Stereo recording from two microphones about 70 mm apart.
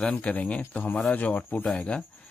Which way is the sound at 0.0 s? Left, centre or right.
Centre.